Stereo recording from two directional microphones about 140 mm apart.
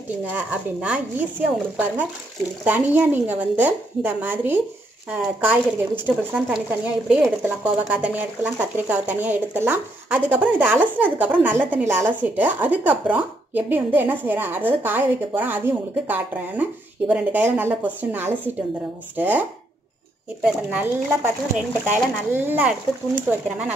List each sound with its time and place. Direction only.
0.3 s speech: 10° right (ahead or behind)
2.6 s speech: 15° right (ahead or behind)
20.4 s speech: 10° right (ahead or behind)